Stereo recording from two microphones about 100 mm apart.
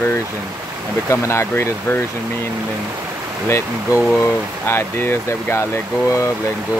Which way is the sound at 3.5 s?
25° left (ahead or behind).